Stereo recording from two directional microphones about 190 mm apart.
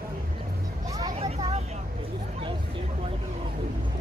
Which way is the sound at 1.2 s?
30° right (ahead or behind).